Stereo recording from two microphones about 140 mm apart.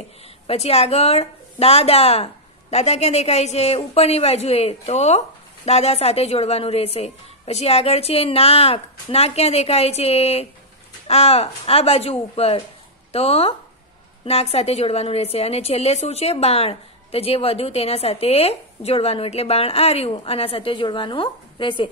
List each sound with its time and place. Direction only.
0.5 s a woman's voice: 45° left (ahead or behind)